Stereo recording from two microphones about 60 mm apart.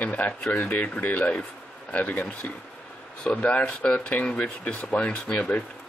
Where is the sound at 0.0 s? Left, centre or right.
Left.